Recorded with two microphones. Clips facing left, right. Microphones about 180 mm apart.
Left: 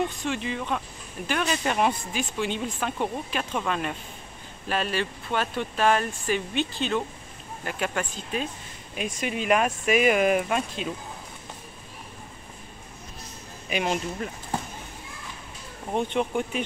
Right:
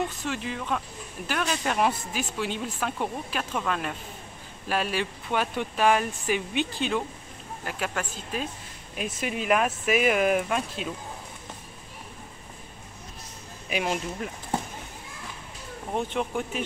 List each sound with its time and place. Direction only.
0.2 s speech: 5° right (ahead or behind)
13.7 s speech: 5° right (ahead or behind)
15.9 s speech: centre (ahead or behind)